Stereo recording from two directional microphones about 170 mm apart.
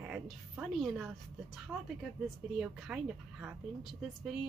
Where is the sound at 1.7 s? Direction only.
15° right (ahead or behind).